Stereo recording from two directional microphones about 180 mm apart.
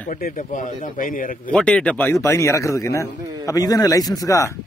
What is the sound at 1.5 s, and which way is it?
A man's voice, 5° left (ahead or behind).